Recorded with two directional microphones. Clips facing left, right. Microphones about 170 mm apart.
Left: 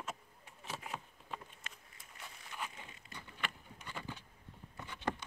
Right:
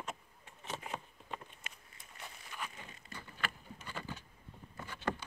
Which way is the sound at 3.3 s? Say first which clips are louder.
Right 2 dB; 20° left (ahead or behind).